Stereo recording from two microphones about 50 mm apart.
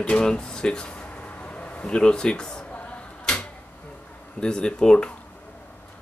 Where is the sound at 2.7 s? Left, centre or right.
Left.